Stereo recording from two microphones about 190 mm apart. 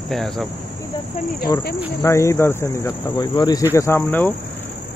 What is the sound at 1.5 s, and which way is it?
Cricket, 15° left (ahead or behind).